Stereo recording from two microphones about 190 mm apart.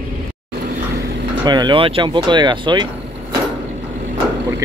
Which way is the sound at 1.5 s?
25° right (ahead or behind).